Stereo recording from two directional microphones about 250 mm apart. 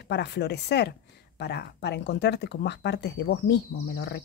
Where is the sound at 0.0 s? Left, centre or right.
Left.